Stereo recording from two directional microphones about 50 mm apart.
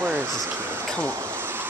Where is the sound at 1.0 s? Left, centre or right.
Right.